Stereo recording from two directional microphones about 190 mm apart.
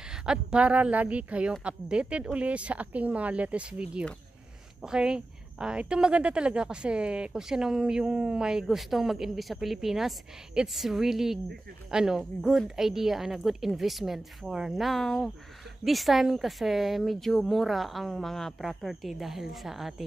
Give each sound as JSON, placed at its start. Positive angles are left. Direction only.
{"t": 0.0, "sound": "a woman's voice", "side_deg": -5}